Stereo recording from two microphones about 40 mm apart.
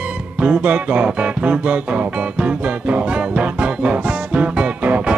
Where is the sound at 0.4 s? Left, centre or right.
Right.